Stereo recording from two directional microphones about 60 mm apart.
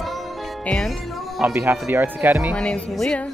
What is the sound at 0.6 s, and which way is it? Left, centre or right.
Music, centre.